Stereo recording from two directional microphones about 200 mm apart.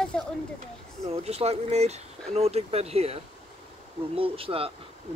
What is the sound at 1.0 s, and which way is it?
Speech, 30° right (ahead or behind).